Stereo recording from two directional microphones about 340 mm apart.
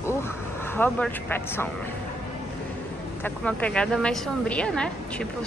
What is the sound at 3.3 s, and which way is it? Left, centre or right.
A woman's voice, centre.